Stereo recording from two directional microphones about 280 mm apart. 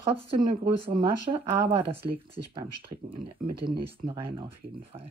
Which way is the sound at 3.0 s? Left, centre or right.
Centre.